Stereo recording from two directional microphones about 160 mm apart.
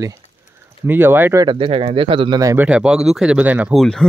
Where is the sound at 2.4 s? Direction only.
20° right (ahead or behind).